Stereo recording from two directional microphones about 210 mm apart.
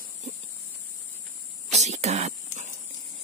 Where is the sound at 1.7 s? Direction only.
30° right (ahead or behind).